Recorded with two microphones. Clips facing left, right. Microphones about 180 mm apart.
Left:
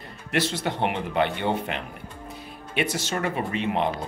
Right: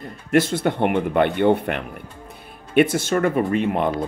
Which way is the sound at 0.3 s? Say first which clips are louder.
Right 7 dB; 50° right (ahead or behind).